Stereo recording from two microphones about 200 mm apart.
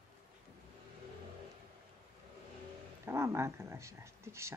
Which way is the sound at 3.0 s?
15° right (ahead or behind).